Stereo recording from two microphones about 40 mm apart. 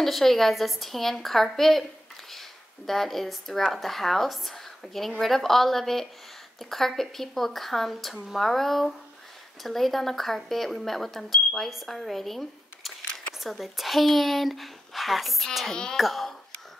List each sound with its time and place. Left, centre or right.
0.0 s a woman's voice: centre
2.9 s a woman's voice: centre
15.7 s speech: centre
16.0 s a woman's voice: centre